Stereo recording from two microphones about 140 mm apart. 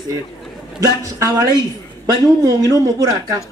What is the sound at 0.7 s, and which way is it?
Speech, 20° right (ahead or behind).